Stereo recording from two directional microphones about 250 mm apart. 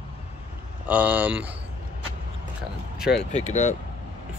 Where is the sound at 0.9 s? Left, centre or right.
Centre.